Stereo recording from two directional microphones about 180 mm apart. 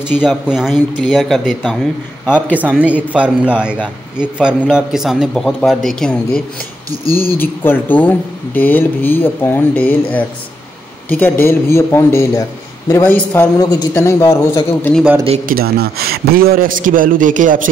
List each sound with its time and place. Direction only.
0.2 s a man's voice: 5° right (ahead or behind)
2.2 s speech: 10° left (ahead or behind)
2.5 s a man's voice: 10° right (ahead or behind); by 13.5 s 10° left (ahead or behind)
13.6 s speech: 20° left (ahead or behind)
15.4 s a man's voice: 55° right (ahead or behind)